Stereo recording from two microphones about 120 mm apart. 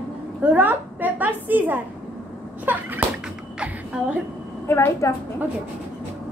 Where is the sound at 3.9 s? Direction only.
5° right (ahead or behind).